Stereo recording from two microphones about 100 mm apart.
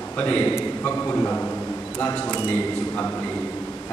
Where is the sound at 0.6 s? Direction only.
20° left (ahead or behind).